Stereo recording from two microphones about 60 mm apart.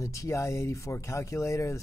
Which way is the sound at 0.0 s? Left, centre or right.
Left.